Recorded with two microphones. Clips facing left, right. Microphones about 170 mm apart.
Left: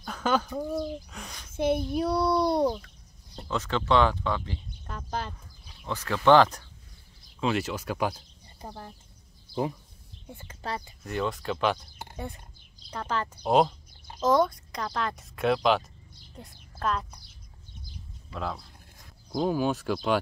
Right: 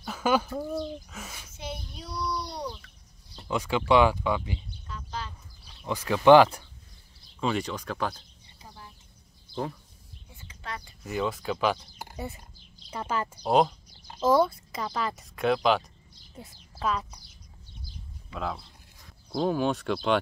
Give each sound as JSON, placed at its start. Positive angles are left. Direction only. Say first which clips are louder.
{"t": 0.0, "sound": "bird", "louder": "right 1 dB", "side_deg": -5}
{"t": 0.7, "sound": "speech", "louder": "left 1 dB", "side_deg": 0}
{"t": 1.5, "sound": "a child's voice", "louder": "left 16 dB", "side_deg": 55}
{"t": 3.4, "sound": "speech", "louder": "right 2 dB", "side_deg": -10}
{"t": 4.8, "sound": "a sound", "louder": "left 5 dB", "side_deg": 55}
{"t": 5.9, "sound": "speech", "louder": "right 3 dB", "side_deg": -15}
{"t": 7.3, "sound": "speech", "louder": "left 1 dB", "side_deg": 5}
{"t": 8.5, "sound": "a sound", "louder": "left 7 dB", "side_deg": 50}
{"t": 9.5, "sound": "a sound", "louder": "left 3 dB", "side_deg": -20}
{"t": 10.2, "sound": "a sound", "louder": "left 9 dB", "side_deg": 55}
{"t": 11.1, "sound": "speech", "louder": "right 1 dB", "side_deg": 0}
{"t": 18.3, "sound": "speech", "louder": "right 1 dB", "side_deg": 0}